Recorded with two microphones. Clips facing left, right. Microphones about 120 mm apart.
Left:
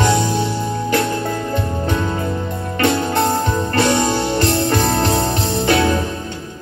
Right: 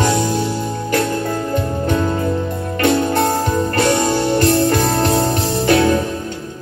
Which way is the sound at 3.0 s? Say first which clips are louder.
Right 1 dB; 25° left (ahead or behind).